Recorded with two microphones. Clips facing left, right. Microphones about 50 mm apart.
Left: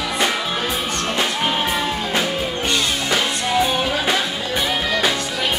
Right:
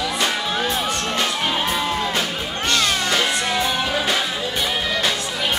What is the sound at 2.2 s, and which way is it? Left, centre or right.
Music, centre.